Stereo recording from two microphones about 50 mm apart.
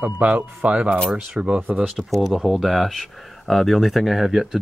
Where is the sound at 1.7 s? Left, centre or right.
Centre.